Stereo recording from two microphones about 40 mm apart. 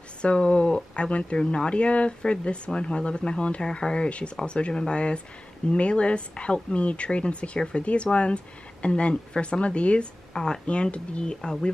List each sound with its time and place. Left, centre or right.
0.2 s speech: left
10.3 s speech: centre
10.7 s speech: left